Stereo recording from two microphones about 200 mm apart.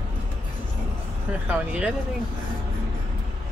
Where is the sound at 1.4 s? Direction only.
5° right (ahead or behind).